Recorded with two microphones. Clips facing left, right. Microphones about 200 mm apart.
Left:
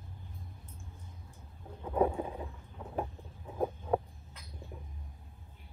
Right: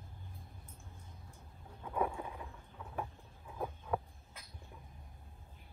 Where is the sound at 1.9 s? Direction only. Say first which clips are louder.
Left 7 dB; 30° left (ahead or behind).